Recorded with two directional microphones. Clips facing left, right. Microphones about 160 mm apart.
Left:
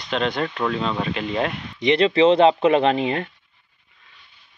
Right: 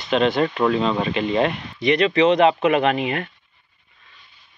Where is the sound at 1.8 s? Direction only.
25° left (ahead or behind).